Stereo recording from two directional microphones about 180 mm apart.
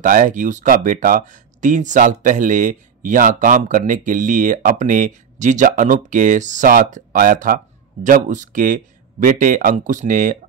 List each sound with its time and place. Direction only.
0.0 s speech: 45° right (ahead or behind)